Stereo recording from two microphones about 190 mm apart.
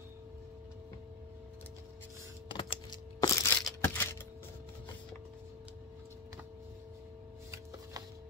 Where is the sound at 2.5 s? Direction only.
25° left (ahead or behind).